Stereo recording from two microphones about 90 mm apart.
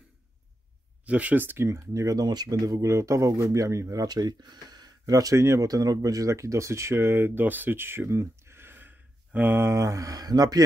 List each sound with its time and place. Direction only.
1.0 s speech: 15° right (ahead or behind); by 2.2 s 35° right (ahead or behind)
2.2 s speech: 50° right (ahead or behind)